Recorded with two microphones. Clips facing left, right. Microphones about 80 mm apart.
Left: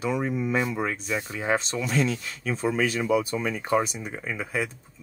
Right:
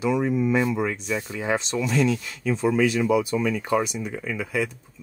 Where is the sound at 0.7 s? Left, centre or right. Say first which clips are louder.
Right 2 dB; left.